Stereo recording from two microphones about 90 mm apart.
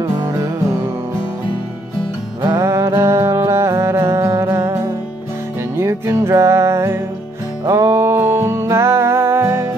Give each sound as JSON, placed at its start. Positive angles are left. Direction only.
{"t": 0.2, "sound": "music", "side_deg": -35}
{"t": 2.6, "sound": "music", "side_deg": -30}